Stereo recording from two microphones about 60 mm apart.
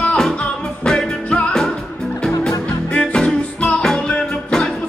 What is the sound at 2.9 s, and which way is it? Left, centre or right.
Music, centre.